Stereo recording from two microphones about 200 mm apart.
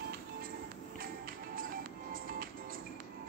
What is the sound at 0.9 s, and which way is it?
Music, 45° right (ahead or behind).